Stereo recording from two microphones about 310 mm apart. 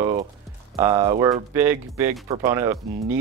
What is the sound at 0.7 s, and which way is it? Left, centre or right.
Speech, centre.